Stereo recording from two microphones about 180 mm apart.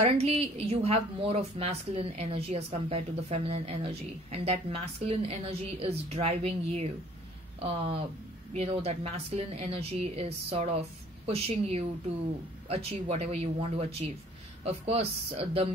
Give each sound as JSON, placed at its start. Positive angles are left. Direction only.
{"t": 0.0, "sound": "a woman's voice", "side_deg": -35}
{"t": 8.5, "sound": "a woman's voice", "side_deg": -35}